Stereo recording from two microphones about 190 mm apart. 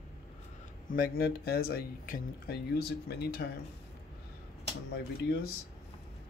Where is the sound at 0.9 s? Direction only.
50° left (ahead or behind).